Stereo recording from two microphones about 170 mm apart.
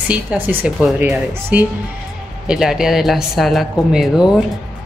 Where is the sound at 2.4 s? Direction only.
5° right (ahead or behind).